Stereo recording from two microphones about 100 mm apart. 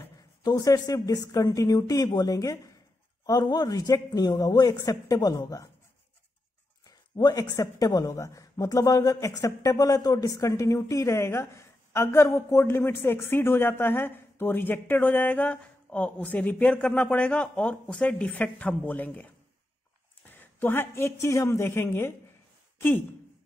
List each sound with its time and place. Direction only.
0.4 s speech: 40° left (ahead or behind)
7.2 s speech: 40° left (ahead or behind); by 23.0 s 20° left (ahead or behind)